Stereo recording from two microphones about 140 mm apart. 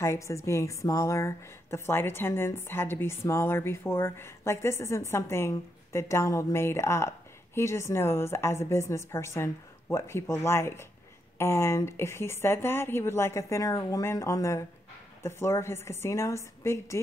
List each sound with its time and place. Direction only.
0.0 s a woman's voice: 20° left (ahead or behind)